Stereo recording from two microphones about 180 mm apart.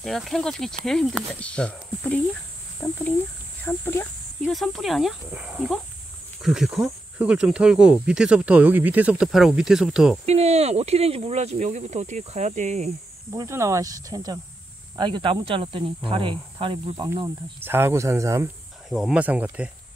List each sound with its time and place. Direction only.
0.0 s speech: centre (ahead or behind)
4.5 s speech: centre (ahead or behind)
10.2 s speech: 35° right (ahead or behind)
13.3 s speech: 15° right (ahead or behind)
17.6 s speech: 10° right (ahead or behind)
18.9 s speech: centre (ahead or behind)